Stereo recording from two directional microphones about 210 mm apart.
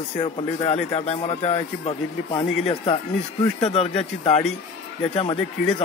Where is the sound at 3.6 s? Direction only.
30° left (ahead or behind).